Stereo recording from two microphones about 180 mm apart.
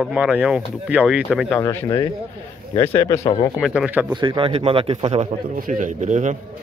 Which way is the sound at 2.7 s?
30° left (ahead or behind).